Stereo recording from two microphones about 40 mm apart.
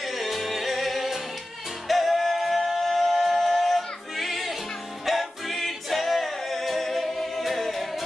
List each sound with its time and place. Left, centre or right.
0.0 s music: centre
1.9 s singing: centre
5.0 s music: centre